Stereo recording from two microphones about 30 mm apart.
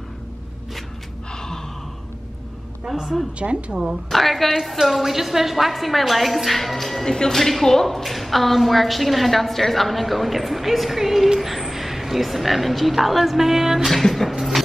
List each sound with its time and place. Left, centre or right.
1.3 s gasp: centre
3.3 s a woman's voice: right
4.1 s a woman's voice: centre
14.3 s a sound: centre